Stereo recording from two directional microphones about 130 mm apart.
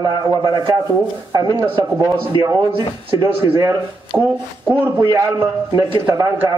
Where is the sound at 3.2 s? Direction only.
25° right (ahead or behind).